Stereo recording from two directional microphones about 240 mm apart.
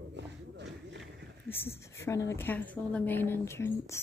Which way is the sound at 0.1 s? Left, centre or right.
Right.